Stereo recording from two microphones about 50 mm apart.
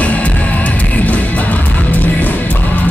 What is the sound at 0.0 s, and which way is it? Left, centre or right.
Music, left.